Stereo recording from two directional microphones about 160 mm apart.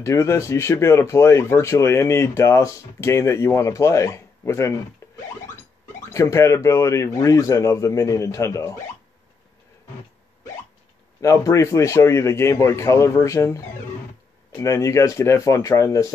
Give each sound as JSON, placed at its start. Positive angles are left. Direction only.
{"t": 0.0, "sound": "speech", "side_deg": 20}
{"t": 5.0, "sound": "a sound", "side_deg": 15}
{"t": 6.1, "sound": "speech", "side_deg": 20}
{"t": 11.1, "sound": "speech", "side_deg": 20}
{"t": 14.6, "sound": "speech", "side_deg": 20}